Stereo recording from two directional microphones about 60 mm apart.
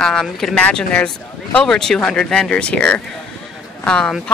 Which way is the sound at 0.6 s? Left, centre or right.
Left.